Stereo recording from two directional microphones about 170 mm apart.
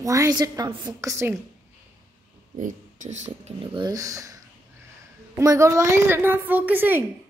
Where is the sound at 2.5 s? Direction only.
45° right (ahead or behind).